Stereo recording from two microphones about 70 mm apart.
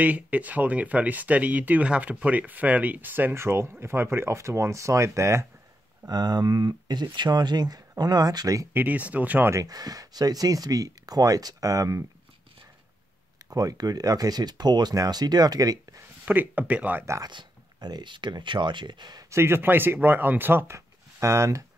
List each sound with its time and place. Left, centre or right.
0.0 s speech: right
6.0 s speech: right
8.7 s speech: right
9.7 s speech: right
13.5 s speech: right
16.3 s speech: right
17.2 s speech: right
19.3 s speech: right
20.7 s a sound: right